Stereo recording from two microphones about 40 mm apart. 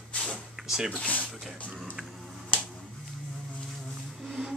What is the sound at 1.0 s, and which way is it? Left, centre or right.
Speech, left.